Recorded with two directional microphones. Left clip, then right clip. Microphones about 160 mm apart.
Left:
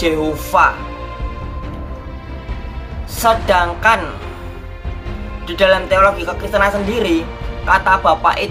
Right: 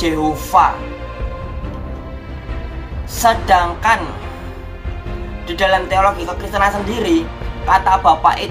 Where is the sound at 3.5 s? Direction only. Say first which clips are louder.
Even; 5° left (ahead or behind).